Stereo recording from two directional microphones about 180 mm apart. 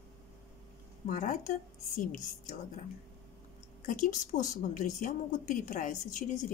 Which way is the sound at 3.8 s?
40° left (ahead or behind).